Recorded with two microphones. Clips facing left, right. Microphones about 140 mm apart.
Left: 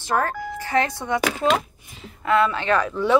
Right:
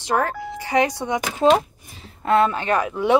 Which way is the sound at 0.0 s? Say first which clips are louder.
Right 1 dB; 15° right (ahead or behind).